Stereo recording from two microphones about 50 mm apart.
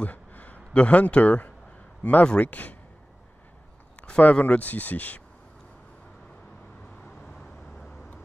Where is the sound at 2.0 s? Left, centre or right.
Left.